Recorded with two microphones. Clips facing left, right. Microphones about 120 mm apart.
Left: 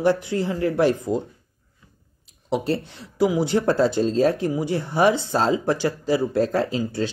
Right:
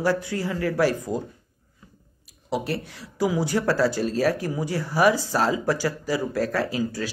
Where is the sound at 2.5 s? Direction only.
25° left (ahead or behind).